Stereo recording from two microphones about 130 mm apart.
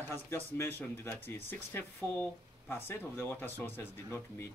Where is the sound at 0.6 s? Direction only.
15° left (ahead or behind).